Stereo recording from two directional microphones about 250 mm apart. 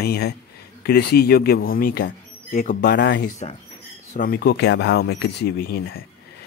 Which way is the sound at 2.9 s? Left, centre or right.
Left.